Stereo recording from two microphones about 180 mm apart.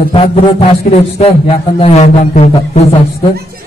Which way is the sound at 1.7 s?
35° left (ahead or behind).